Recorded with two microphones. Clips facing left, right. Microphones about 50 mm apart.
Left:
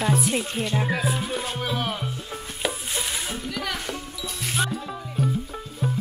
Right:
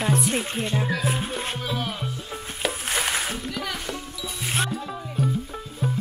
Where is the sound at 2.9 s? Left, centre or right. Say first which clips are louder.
Right 4 dB; right.